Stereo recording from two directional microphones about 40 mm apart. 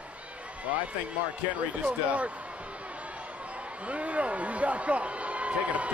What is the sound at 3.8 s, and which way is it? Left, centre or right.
A man's voice, right.